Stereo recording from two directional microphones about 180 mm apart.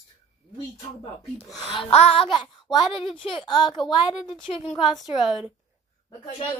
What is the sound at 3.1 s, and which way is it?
A woman's voice, 30° left (ahead or behind).